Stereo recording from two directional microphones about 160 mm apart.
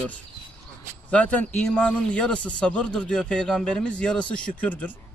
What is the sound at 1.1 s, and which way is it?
Speech, 10° left (ahead or behind).